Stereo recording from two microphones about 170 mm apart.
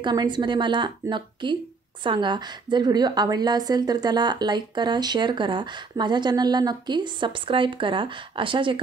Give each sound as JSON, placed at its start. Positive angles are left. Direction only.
{"t": 0.0, "sound": "a woman's voice", "side_deg": -25}